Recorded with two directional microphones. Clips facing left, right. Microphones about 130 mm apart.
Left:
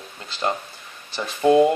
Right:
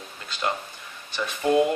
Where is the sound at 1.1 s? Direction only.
35° left (ahead or behind).